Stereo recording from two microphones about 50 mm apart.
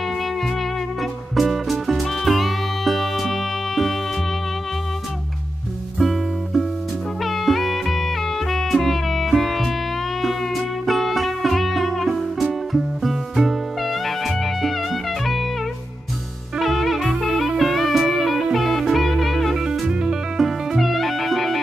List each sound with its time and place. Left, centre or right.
1.3 s music: centre
5.9 s music: centre
16.5 s music: centre
19.6 s music: centre